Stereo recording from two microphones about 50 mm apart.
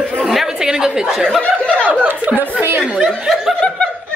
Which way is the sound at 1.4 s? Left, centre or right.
Left.